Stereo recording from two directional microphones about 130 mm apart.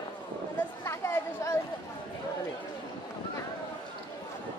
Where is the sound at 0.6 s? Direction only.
20° left (ahead or behind).